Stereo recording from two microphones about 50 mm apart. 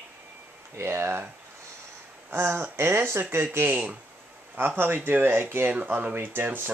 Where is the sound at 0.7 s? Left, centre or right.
Right.